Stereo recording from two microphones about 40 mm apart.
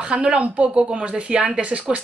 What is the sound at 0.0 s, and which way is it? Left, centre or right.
A woman's voice, right.